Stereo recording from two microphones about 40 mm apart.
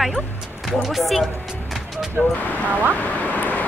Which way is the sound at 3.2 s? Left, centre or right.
Left.